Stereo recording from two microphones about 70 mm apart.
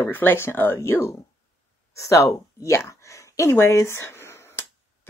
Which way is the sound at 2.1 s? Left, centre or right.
Left.